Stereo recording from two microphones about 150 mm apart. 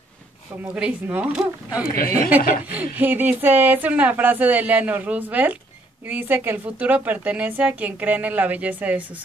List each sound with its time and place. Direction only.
0.6 s a woman's voice: 10° right (ahead or behind)
1.9 s a woman's voice: 80° left
2.7 s a woman's voice: 10° right (ahead or behind)